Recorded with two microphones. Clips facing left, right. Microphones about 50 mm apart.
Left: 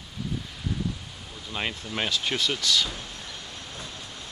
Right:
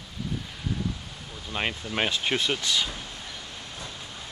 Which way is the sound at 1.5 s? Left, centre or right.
Centre.